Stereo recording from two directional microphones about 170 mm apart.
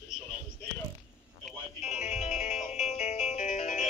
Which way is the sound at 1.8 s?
40° left (ahead or behind).